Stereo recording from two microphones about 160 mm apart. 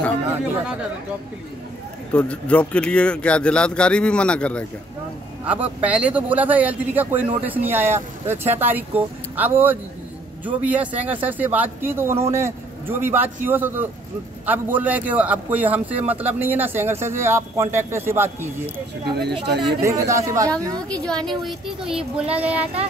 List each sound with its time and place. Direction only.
2.1 s speech: 10° left (ahead or behind)
5.4 s a man's voice: 10° right (ahead or behind)
19.1 s speech: 90° right
19.8 s speech: 20° right (ahead or behind)
20.9 s a man's voice: 5° left (ahead or behind)